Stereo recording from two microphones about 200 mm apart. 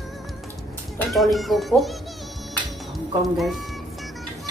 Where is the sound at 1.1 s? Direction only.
Centre (ahead or behind).